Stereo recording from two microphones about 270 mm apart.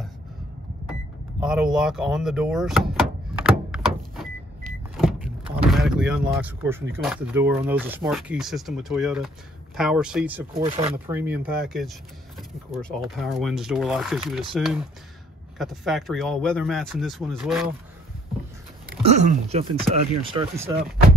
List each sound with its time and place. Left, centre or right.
1.4 s door: centre
4.9 s speech: centre
10.5 s speech: right
11.1 s speech: centre
18.9 s speech: right